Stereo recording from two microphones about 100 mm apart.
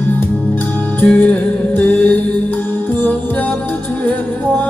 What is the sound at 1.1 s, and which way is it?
Music, 20° left (ahead or behind).